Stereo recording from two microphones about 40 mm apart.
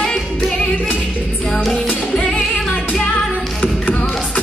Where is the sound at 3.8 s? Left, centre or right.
Left.